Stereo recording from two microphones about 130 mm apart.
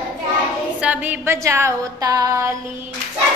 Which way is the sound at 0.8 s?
15° right (ahead or behind).